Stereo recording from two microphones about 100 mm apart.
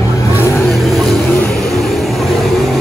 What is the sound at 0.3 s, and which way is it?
Vehicle, 25° left (ahead or behind).